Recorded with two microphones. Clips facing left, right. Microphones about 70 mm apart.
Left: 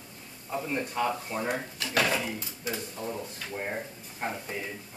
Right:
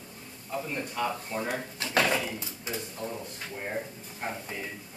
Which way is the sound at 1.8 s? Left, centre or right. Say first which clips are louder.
Right 2 dB; right.